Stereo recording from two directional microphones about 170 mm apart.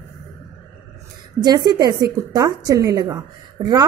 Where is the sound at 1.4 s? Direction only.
25° right (ahead or behind).